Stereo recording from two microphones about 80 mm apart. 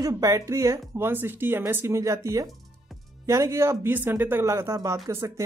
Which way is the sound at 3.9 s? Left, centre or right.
Right.